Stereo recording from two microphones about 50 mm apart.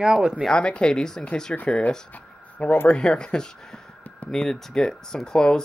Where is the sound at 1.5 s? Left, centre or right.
Left.